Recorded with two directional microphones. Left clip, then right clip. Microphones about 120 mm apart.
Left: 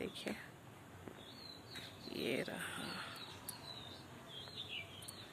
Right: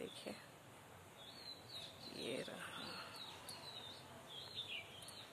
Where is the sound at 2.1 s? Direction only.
5° left (ahead or behind).